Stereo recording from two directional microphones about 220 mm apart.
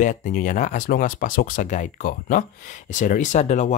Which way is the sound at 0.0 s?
35° left (ahead or behind).